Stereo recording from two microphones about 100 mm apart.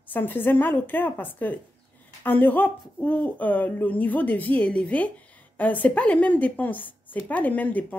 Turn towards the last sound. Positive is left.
turn(degrees=15)  # may be behind; listen again after turning